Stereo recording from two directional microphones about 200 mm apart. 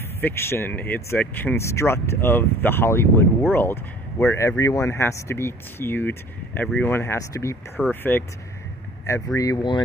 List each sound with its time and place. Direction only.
0.2 s speech: 10° left (ahead or behind)